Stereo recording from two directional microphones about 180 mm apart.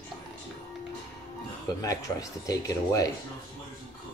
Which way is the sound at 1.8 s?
20° left (ahead or behind).